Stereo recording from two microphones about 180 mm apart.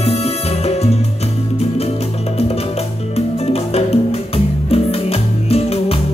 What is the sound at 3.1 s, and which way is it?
Music, 35° left (ahead or behind).